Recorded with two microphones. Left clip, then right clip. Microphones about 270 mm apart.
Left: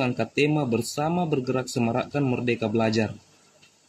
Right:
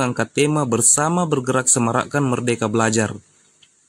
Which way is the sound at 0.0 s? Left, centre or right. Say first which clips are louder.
Right 5 dB; right.